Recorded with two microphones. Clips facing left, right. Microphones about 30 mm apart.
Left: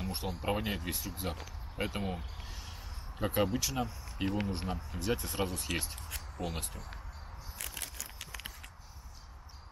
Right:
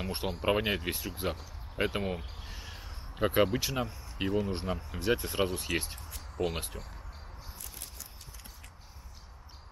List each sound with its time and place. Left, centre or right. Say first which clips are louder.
0.0 s speech: right 5 dB; right
3.2 s speech: right 4 dB; right
7.5 s a sound: left 9 dB; left